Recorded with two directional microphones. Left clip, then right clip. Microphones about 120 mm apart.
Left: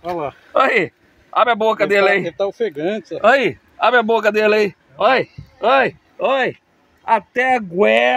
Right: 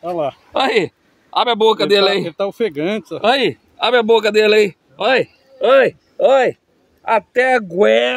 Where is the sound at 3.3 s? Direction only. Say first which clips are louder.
Left 1 dB; 35° right (ahead or behind).